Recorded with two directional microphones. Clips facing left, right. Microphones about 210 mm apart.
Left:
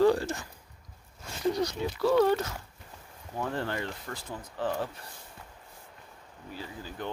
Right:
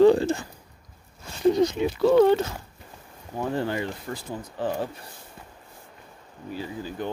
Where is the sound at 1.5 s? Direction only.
20° right (ahead or behind).